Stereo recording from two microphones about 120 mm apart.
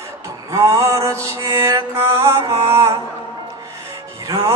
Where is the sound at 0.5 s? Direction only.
25° right (ahead or behind).